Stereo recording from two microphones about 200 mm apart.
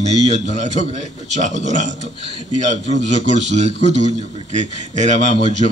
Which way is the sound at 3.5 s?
35° right (ahead or behind).